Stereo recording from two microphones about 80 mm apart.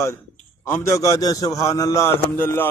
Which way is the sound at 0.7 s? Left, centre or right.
Left.